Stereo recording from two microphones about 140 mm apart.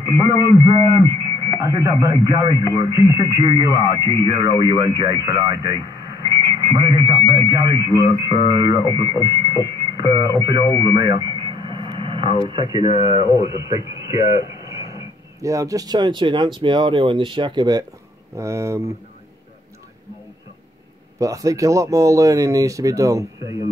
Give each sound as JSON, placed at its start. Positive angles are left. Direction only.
{"t": 0.0, "sound": "speech", "side_deg": 25}
{"t": 1.2, "sound": "radio", "side_deg": -30}
{"t": 1.9, "sound": "speech", "side_deg": -25}
{"t": 10.7, "sound": "radio", "side_deg": -30}
{"t": 12.4, "sound": "speech", "side_deg": -35}
{"t": 18.3, "sound": "speech", "side_deg": -20}
{"t": 21.2, "sound": "speech", "side_deg": -25}